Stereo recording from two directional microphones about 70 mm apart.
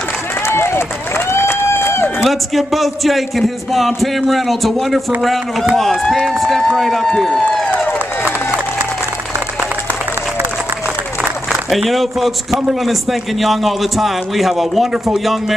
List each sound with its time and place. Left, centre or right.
0.5 s run: left
2.2 s a man's voice: centre
11.7 s a man's voice: centre